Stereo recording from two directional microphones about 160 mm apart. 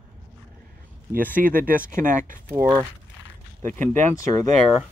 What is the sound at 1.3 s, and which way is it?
Speech, 60° right (ahead or behind).